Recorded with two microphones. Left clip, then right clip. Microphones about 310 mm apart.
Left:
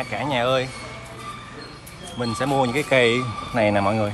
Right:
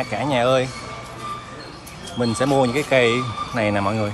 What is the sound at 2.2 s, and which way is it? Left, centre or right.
Speech, centre.